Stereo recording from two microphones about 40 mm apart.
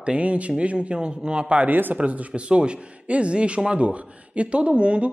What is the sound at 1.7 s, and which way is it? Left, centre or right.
Speech, right.